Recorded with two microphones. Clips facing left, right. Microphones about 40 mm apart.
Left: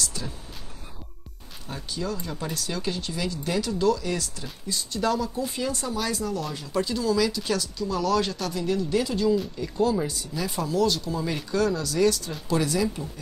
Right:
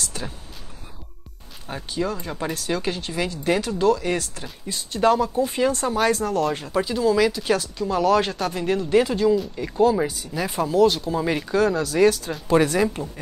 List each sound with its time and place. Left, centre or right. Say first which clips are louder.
0.0 s a sound: right 1 dB; right
1.7 s speech: right 5 dB; right
6.7 s speech: right 1 dB; right